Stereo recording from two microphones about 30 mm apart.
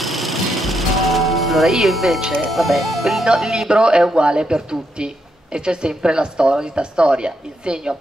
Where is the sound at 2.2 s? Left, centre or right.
Right.